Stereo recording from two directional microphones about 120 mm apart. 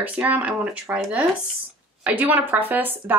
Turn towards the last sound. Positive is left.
turn(degrees=-15)  # may be behind; listen again after turning